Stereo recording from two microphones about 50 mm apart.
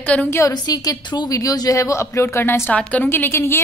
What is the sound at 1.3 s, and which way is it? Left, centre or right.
Speech, left.